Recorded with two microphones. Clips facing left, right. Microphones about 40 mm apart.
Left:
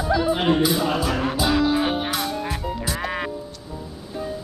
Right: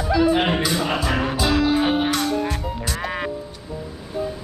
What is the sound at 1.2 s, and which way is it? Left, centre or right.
Music, centre.